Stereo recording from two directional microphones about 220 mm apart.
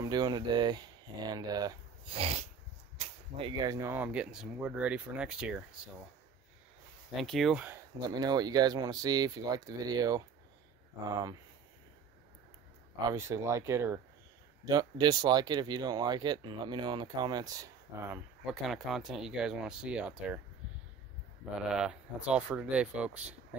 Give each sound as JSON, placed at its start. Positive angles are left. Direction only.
{"t": 0.0, "sound": "speech", "side_deg": -20}
{"t": 7.2, "sound": "speech", "side_deg": 0}
{"t": 8.0, "sound": "speech", "side_deg": -20}
{"t": 13.1, "sound": "speech", "side_deg": -15}
{"t": 21.6, "sound": "speech", "side_deg": -5}